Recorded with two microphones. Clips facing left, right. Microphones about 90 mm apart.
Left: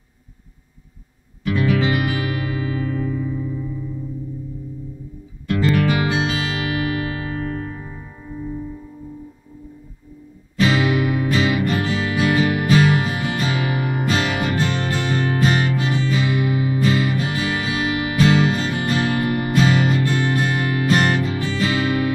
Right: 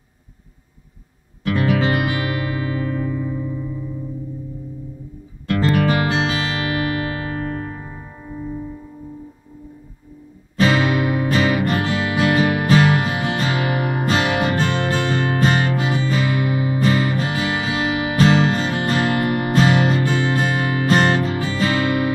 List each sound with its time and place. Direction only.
1.7 s music: 40° right (ahead or behind)
5.6 s music: 40° right (ahead or behind)
10.6 s music: 40° right (ahead or behind)
15.9 s music: 50° right (ahead or behind)
20.2 s music: 30° right (ahead or behind)